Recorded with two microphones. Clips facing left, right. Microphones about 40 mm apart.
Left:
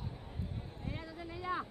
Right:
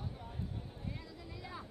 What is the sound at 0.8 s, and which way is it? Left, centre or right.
Vehicle, left.